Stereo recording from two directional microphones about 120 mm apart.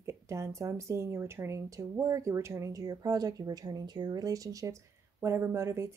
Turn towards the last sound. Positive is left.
turn(degrees=-25)  # may be behind; listen again after turning